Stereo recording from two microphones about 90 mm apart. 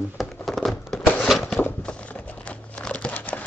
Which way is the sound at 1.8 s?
10° left (ahead or behind).